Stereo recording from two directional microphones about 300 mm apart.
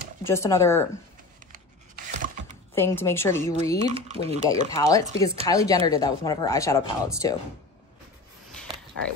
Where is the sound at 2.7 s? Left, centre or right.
Centre.